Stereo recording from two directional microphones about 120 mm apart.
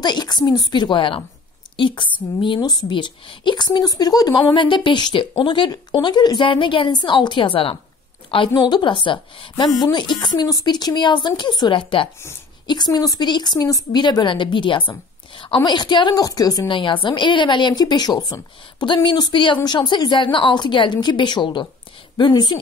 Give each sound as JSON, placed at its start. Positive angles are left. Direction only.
{"t": 0.0, "sound": "a woman's voice", "side_deg": 35}
{"t": 16.6, "sound": "a woman's voice", "side_deg": 45}